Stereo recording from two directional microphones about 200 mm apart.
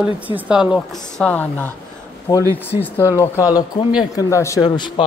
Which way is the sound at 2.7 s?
10° right (ahead or behind).